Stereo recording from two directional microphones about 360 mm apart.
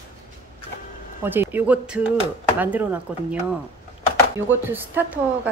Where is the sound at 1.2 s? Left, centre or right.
Centre.